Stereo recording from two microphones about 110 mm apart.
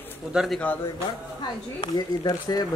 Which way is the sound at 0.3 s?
5° right (ahead or behind).